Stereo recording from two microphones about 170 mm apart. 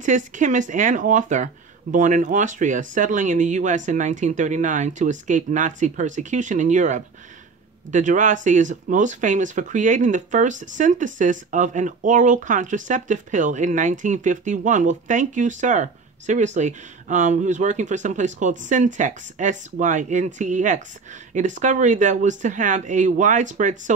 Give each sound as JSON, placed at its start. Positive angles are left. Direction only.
{"t": 0.0, "sound": "speech", "side_deg": -50}